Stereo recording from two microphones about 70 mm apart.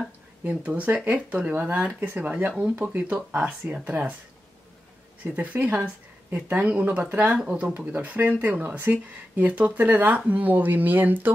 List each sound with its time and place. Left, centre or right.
0.5 s speech: centre
5.2 s speech: right
7.3 s speech: centre